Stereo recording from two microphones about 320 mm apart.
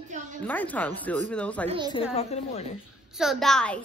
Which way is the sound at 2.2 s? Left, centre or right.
Centre.